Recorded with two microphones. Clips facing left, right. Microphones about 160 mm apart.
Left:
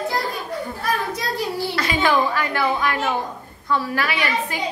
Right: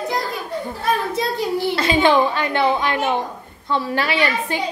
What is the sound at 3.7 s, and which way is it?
Speech, 25° right (ahead or behind).